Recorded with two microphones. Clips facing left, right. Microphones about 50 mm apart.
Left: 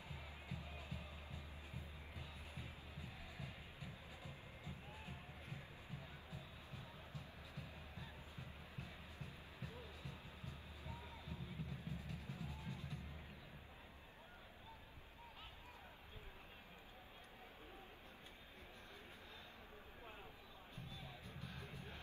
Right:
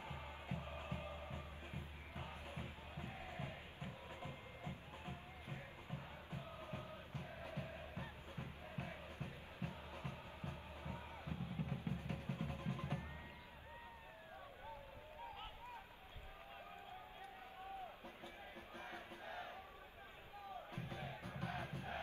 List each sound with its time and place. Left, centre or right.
0.0 s music: right
18.9 s music: right
20.7 s music: right